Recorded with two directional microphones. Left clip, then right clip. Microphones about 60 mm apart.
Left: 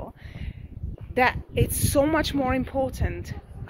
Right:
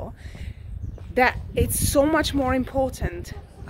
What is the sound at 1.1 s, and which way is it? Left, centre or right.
A woman's voice, right.